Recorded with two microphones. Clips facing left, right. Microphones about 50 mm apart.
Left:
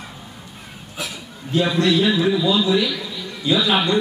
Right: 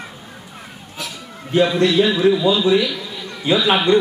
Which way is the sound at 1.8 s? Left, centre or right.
Right.